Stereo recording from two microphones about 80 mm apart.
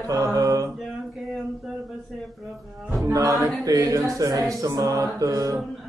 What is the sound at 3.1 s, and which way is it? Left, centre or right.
Mantra, right.